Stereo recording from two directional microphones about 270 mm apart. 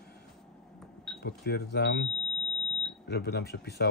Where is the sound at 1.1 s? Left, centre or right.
Left.